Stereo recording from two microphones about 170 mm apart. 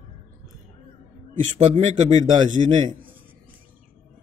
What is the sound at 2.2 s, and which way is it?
Speech, 25° right (ahead or behind).